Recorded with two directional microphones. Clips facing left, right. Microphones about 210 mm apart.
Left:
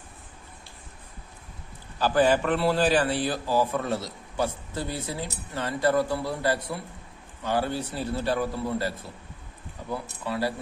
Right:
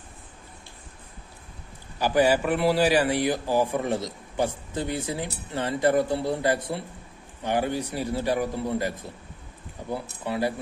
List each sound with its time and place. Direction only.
2.0 s a man's voice: 15° right (ahead or behind)